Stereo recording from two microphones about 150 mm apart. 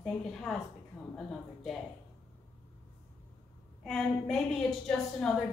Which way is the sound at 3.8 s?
Centre (ahead or behind).